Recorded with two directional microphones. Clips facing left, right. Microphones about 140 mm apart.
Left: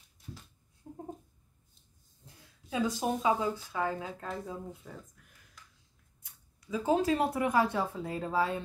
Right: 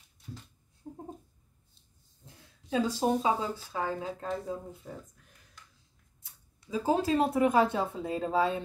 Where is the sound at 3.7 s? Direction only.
30° right (ahead or behind).